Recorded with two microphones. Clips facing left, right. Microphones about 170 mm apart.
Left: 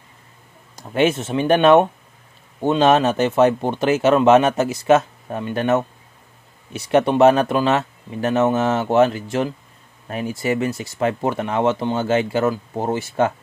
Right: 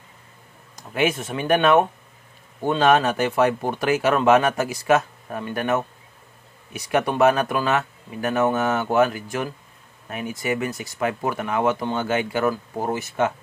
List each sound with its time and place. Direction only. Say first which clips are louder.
0.7 s speech: left 4 dB; 30° left (ahead or behind)